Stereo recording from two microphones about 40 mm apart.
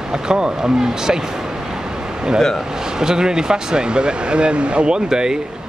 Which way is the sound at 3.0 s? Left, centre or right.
Centre.